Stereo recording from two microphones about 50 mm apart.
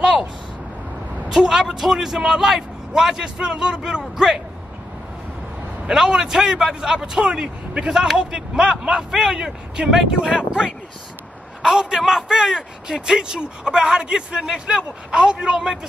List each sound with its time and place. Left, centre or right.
0.0 s vehicle: centre
1.3 s speech: centre
5.9 s speech: centre